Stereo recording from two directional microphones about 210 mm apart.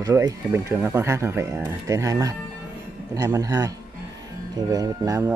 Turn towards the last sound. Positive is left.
turn(degrees=-15)  # may be behind; listen again after turning